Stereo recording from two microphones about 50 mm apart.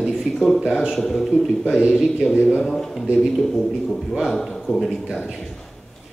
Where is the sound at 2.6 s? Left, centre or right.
Centre.